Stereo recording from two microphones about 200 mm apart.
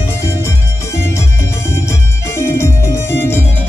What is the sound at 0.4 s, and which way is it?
Music, 15° left (ahead or behind).